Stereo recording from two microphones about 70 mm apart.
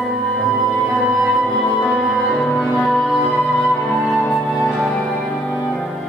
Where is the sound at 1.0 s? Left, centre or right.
Centre.